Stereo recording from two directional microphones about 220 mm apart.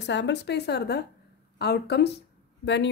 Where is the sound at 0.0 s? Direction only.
50° left (ahead or behind).